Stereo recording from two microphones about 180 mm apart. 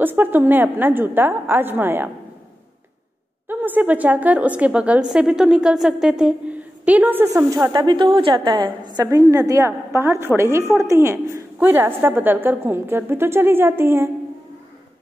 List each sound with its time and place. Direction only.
0.0 s a woman's voice: 10° right (ahead or behind)
3.4 s a woman's voice: 10° right (ahead or behind)